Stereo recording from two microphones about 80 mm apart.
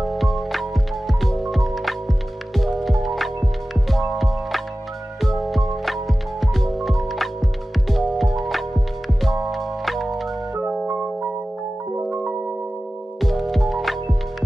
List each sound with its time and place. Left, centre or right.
0.0 s music: centre
10.5 s music: centre
12.0 s music: right
13.2 s music: centre